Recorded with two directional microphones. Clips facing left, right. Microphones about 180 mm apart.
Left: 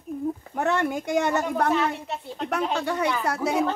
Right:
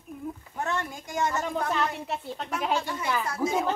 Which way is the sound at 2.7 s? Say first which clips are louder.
Left 3 dB; 70° left (ahead or behind).